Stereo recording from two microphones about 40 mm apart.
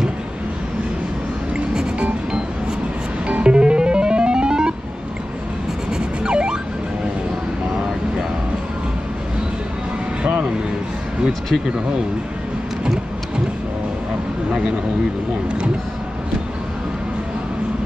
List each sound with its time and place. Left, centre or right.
1.7 s music: centre
3.3 s music: right
5.9 s emergency vehicle: right
11.5 s speech: centre